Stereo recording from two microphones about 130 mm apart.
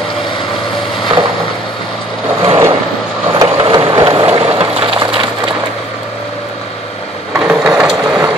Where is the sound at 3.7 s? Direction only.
35° right (ahead or behind).